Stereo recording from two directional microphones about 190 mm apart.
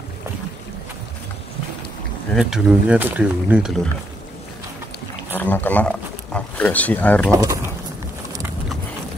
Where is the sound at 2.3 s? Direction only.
Centre (ahead or behind).